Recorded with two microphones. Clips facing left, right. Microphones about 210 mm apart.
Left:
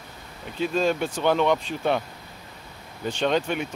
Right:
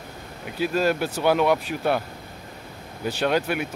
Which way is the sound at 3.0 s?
5° right (ahead or behind).